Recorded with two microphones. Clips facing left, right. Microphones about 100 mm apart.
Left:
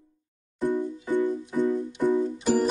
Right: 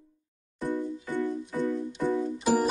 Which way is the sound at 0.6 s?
15° left (ahead or behind).